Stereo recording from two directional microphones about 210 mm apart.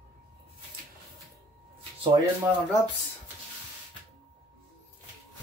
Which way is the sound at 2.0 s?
25° right (ahead or behind).